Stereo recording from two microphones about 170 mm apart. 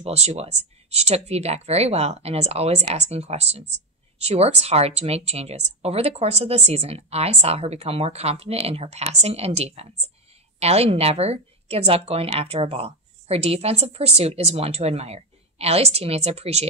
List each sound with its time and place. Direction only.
0.0 s a woman's voice: 40° right (ahead or behind)